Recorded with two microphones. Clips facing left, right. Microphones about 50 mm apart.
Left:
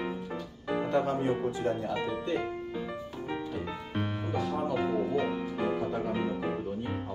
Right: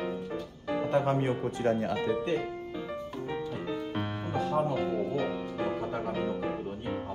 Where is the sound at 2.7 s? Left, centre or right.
Centre.